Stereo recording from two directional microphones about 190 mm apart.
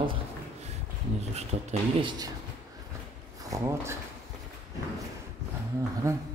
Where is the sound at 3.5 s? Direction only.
15° right (ahead or behind).